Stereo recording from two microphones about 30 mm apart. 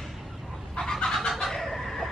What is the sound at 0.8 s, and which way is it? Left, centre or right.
Chicken, left.